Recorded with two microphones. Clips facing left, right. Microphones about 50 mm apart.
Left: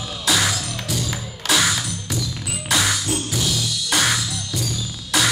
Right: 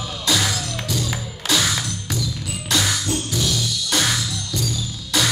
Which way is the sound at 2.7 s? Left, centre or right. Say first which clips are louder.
Left 1 dB; centre.